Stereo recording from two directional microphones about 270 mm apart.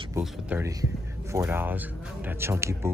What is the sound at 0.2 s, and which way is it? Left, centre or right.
Speech, centre.